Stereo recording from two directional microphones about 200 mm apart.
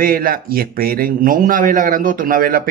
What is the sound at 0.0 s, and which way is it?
Speech, 45° right (ahead or behind).